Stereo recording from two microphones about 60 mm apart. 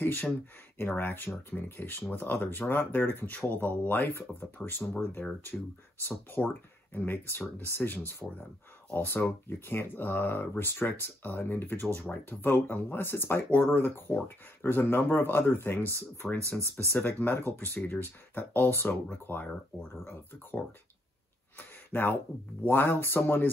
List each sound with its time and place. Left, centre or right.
0.0 s speech: left
5.5 s speech: centre
6.9 s speech: left
8.2 s speech: left
8.9 s speech: left
16.2 s speech: left
21.5 s a sound: left
22.7 s speech: left